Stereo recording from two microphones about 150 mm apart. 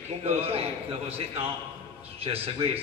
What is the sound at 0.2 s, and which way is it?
A man's voice, 45° right (ahead or behind).